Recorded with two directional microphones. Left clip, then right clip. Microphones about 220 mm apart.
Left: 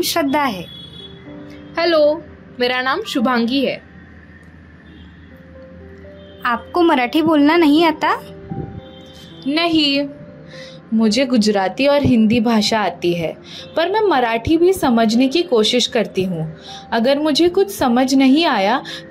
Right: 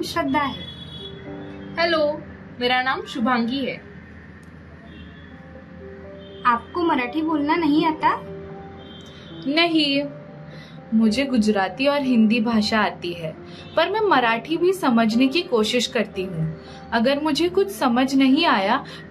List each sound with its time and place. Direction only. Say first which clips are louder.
0.0 s a woman's voice: left 5 dB; 45° left (ahead or behind)
1.8 s a child's voice: left 6 dB; 40° left (ahead or behind)
6.4 s a woman's voice: left 4 dB; 40° left (ahead or behind)
9.4 s speech: left 3 dB; 20° left (ahead or behind)
11.0 s speech: left 5 dB; 30° left (ahead or behind)